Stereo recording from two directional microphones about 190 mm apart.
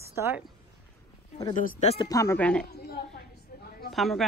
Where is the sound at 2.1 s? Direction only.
15° left (ahead or behind).